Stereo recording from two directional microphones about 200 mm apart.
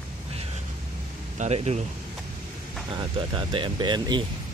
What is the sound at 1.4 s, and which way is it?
Speech, 35° right (ahead or behind).